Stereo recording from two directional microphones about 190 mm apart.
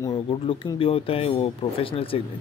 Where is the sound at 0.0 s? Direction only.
25° left (ahead or behind).